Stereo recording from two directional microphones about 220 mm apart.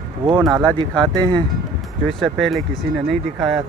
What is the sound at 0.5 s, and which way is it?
Speech, 20° right (ahead or behind).